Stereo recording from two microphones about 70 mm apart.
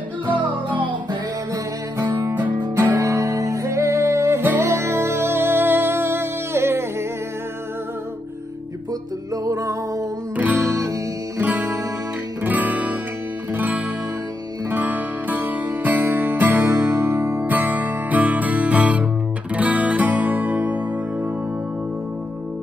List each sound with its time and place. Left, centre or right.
0.3 s music: right
2.1 s music: right
3.0 s music: right
9.3 s music: right
10.3 s music: right
10.7 s music: right
11.4 s music: right
12.4 s guitar: right
13.5 s music: right